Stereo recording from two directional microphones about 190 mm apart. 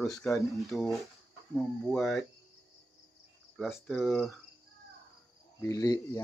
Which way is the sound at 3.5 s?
Centre (ahead or behind).